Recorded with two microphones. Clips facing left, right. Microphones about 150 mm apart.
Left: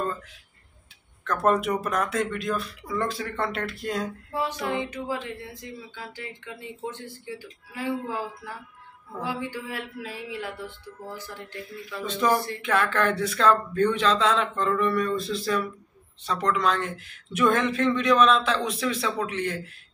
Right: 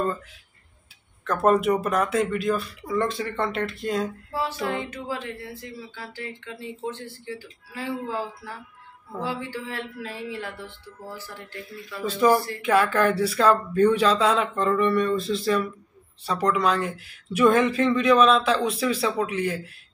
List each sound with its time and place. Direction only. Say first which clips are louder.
1.2 s speech: right 3 dB; 5° right (ahead or behind)
4.3 s speech: left 2 dB; 15° left (ahead or behind)
12.0 s speech: right 4 dB; 5° right (ahead or behind)